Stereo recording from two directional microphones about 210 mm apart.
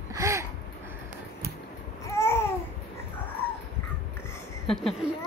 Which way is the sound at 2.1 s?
10° left (ahead or behind).